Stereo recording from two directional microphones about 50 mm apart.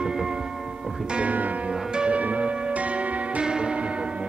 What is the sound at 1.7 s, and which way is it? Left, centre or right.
Music, centre.